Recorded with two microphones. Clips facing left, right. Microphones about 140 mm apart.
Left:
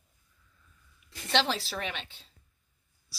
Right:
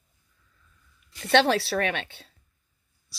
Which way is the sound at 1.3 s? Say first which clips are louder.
Right 8 dB; 60° right (ahead or behind).